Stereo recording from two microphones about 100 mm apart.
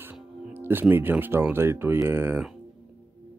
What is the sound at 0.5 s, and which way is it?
Speech, 20° right (ahead or behind).